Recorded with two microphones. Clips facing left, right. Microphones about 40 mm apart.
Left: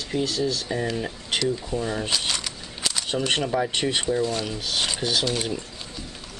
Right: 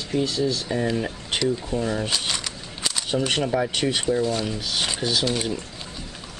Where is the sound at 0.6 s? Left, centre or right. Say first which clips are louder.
Right 2 dB; centre.